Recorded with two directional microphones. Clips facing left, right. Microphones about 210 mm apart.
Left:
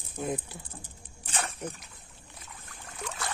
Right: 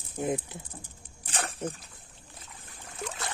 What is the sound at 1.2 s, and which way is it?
Dog, 35° right (ahead or behind).